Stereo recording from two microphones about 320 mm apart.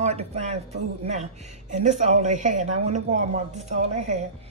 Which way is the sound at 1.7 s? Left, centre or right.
Right.